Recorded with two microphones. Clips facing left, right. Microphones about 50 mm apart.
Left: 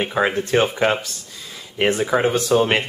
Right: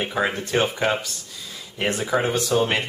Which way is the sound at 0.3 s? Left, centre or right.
Centre.